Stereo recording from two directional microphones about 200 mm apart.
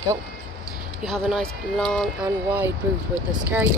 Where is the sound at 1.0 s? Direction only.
Centre (ahead or behind).